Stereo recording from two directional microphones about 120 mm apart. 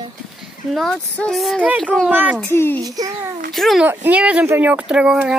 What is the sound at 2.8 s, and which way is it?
Speech, 30° right (ahead or behind).